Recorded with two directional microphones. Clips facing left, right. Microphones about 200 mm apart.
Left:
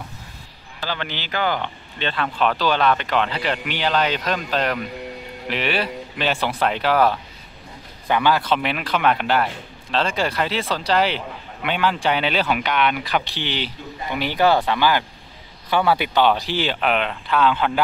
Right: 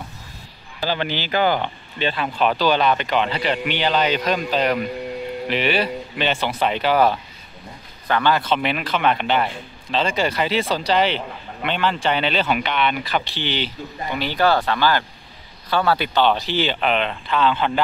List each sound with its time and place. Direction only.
0.8 s a man's voice: 10° right (ahead or behind); by 17.7 s 5° left (ahead or behind)